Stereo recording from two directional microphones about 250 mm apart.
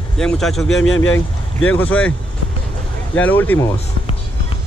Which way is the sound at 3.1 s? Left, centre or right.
Centre.